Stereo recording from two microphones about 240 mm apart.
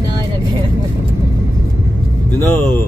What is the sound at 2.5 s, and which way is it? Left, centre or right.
Speech, centre.